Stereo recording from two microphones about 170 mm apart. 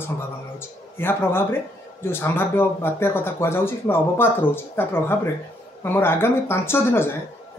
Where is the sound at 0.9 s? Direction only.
15° left (ahead or behind).